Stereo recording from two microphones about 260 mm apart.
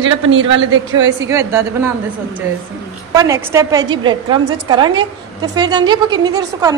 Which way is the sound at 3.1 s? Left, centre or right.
Centre.